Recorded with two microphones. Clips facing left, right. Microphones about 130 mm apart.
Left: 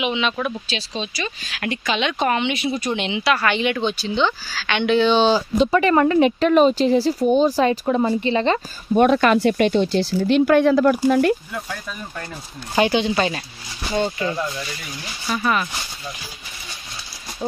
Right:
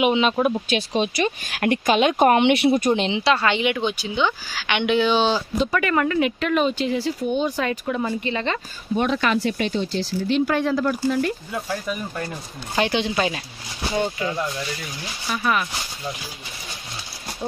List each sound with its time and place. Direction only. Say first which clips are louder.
0.0 s speech: right 4 dB; 45° right (ahead or behind)
0.7 s speech: right 6 dB; 55° right (ahead or behind)
2.8 s speech: right 3 dB; 35° right (ahead or behind); by 5.4 s 5° right (ahead or behind)
5.6 s speech: left 6 dB; 25° left (ahead or behind)
8.9 s speech: left 6 dB; 50° left (ahead or behind)
11.5 s speech: right 4 dB; 15° right (ahead or behind)
12.7 s speech: left 4 dB; 5° left (ahead or behind)